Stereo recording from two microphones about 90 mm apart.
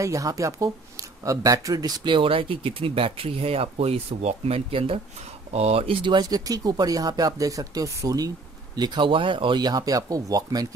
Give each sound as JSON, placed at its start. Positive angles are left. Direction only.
{"t": 0.0, "sound": "speech", "side_deg": -35}
{"t": 2.1, "sound": "speech", "side_deg": -80}
{"t": 6.4, "sound": "speech", "side_deg": -45}
{"t": 8.7, "sound": "speech", "side_deg": -55}